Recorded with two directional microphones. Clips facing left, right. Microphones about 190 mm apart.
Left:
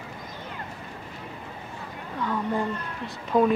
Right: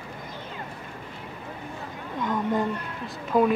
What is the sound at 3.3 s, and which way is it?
Speech, 5° right (ahead or behind).